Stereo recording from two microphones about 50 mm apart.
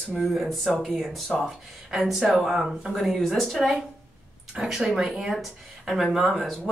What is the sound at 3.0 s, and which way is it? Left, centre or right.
Speech, centre.